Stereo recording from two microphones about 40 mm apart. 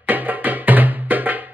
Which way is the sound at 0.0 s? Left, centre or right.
Right.